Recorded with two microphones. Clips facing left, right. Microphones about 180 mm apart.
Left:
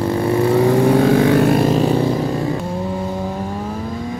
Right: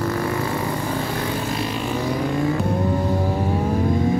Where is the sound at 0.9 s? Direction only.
75° left (ahead or behind); by 2.0 s 40° left (ahead or behind).